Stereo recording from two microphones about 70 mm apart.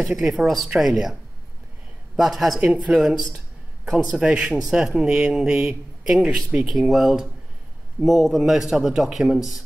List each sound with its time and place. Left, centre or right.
0.0 s a man's voice: centre
2.1 s a man's voice: centre
2.6 s a man's voice: centre